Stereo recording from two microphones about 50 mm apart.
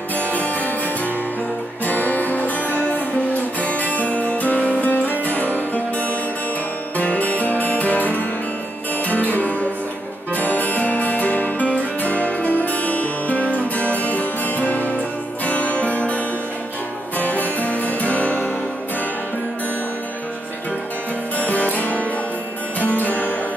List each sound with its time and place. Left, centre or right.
1.9 s music: left
3.6 s music: left
7.0 s music: left
17.2 s music: left
21.4 s music: left